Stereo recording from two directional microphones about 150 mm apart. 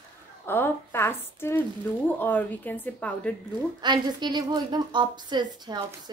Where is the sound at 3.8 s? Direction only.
30° right (ahead or behind).